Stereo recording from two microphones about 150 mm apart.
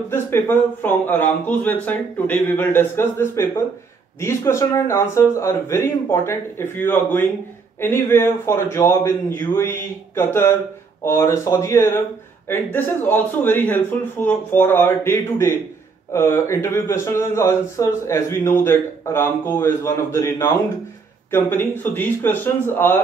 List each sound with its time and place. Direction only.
0.1 s speech: 15° left (ahead or behind)